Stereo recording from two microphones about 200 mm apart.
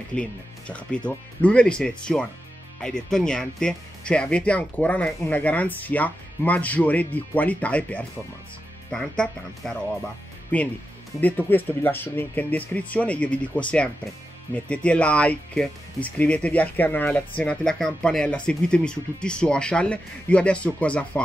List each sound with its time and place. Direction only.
0.1 s speech: 5° left (ahead or behind)